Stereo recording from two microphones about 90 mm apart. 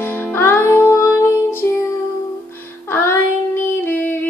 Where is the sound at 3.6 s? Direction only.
20° left (ahead or behind).